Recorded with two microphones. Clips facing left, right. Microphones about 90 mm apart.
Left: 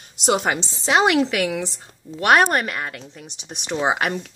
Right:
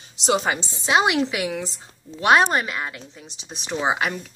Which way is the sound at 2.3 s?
60° left (ahead or behind).